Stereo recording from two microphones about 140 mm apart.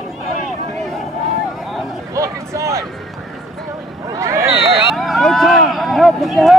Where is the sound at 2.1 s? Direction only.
20° right (ahead or behind).